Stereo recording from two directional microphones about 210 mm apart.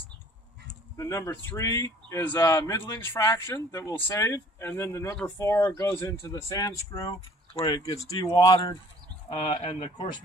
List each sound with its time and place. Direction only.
0.9 s speech: 15° left (ahead or behind)